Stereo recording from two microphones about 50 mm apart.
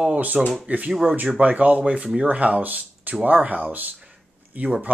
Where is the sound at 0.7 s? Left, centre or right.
Right.